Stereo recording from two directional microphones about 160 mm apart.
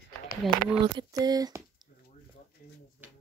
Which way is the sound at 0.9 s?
25° right (ahead or behind).